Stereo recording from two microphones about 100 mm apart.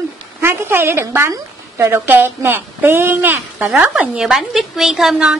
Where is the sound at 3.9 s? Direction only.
5° right (ahead or behind).